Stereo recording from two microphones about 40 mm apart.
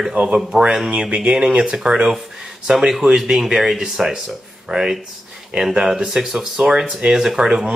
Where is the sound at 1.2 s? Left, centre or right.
Centre.